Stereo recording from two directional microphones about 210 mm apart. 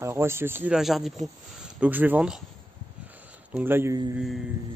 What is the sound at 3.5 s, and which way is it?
Speech, 10° right (ahead or behind).